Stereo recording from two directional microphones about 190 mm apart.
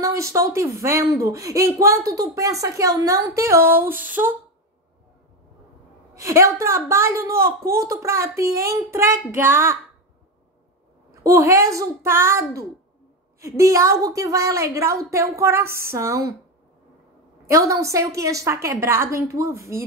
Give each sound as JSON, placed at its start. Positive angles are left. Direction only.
{"t": 0.0, "sound": "speech", "side_deg": -15}
{"t": 6.1, "sound": "speech", "side_deg": -15}
{"t": 11.2, "sound": "speech", "side_deg": -15}
{"t": 17.5, "sound": "speech", "side_deg": -15}